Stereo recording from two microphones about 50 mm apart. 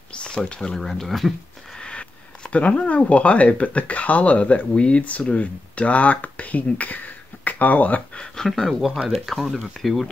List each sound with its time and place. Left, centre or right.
0.1 s speech: centre
1.8 s speech: centre
8.5 s speech: centre